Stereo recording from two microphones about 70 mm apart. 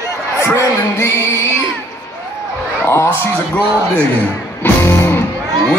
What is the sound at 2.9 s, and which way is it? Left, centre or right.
Speech, left.